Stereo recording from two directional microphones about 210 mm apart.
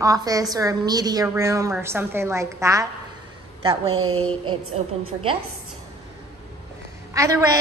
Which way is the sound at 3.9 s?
90° right.